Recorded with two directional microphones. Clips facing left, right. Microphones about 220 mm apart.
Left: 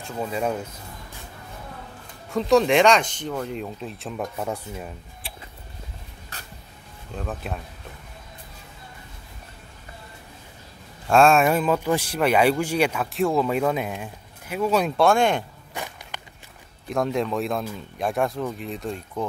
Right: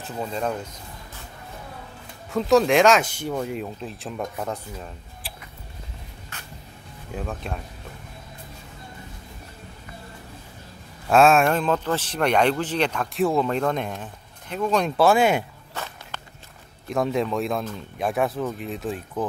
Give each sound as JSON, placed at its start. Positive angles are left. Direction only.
{"t": 0.0, "sound": "speech", "side_deg": 5}
{"t": 2.3, "sound": "speech", "side_deg": 0}
{"t": 4.5, "sound": "speech", "side_deg": 10}
{"t": 5.2, "sound": "a sound", "side_deg": 0}
{"t": 6.3, "sound": "vehicle", "side_deg": 35}
{"t": 7.2, "sound": "speech", "side_deg": 5}
{"t": 11.1, "sound": "speech", "side_deg": 0}
{"t": 15.7, "sound": "walk", "side_deg": 15}
{"t": 16.9, "sound": "speech", "side_deg": 0}